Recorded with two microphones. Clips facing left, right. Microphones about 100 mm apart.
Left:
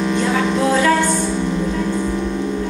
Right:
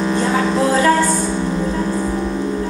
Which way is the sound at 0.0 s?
35° right (ahead or behind).